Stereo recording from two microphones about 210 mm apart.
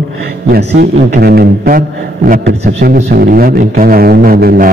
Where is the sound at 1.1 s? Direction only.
45° right (ahead or behind).